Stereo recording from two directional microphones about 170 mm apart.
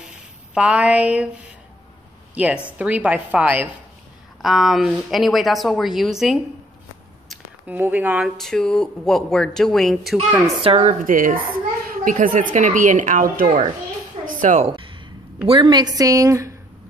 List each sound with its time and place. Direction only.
0.6 s a woman's voice: 5° right (ahead or behind)
2.3 s a woman's voice: 5° right (ahead or behind)
10.6 s a woman's voice: 40° right (ahead or behind)
11.8 s children playing: 55° right (ahead or behind)
12.5 s a woman's voice: 50° right (ahead or behind)
14.7 s a sound: 30° right (ahead or behind)
15.4 s a woman's voice: 30° right (ahead or behind)